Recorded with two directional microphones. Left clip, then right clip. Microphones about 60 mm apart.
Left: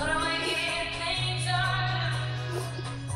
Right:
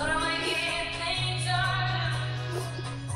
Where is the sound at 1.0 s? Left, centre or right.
Right.